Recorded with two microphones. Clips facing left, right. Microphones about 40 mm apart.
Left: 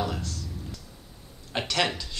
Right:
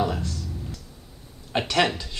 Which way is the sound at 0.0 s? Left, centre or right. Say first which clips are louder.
Right 5 dB; centre.